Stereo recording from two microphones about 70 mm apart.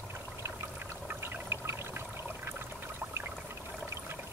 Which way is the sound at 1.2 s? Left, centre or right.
Right.